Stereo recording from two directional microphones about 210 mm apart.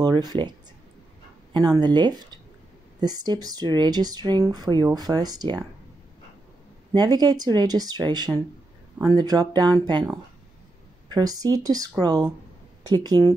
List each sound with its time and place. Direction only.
0.0 s speech: 20° right (ahead or behind)
7.0 s speech: 20° right (ahead or behind)